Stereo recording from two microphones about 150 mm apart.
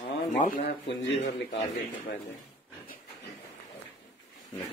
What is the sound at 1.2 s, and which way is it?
Speech, 55° left (ahead or behind).